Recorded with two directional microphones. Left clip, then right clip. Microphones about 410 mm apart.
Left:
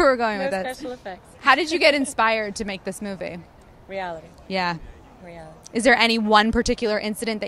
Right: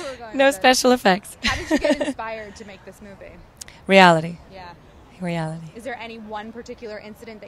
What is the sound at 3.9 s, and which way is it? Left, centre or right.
Speech, right.